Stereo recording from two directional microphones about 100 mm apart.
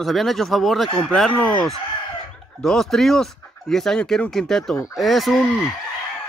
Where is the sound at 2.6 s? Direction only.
5° left (ahead or behind).